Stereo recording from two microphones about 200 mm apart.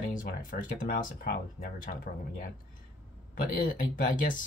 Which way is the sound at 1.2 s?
45° left (ahead or behind).